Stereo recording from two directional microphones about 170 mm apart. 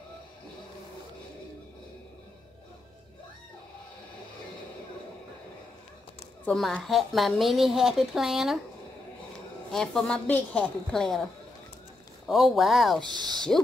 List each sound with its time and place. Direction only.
6.4 s a woman's voice: 5° left (ahead or behind)
9.7 s a woman's voice: centre (ahead or behind)
12.3 s a woman's voice: centre (ahead or behind)
13.0 s speech: 25° right (ahead or behind)